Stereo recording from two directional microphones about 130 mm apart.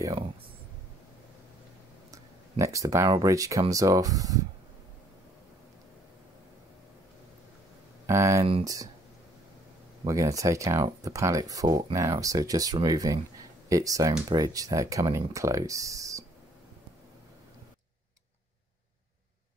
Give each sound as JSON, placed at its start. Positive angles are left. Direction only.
{"t": 2.6, "sound": "speech", "side_deg": -25}
{"t": 8.1, "sound": "speech", "side_deg": -25}
{"t": 10.0, "sound": "speech", "side_deg": -25}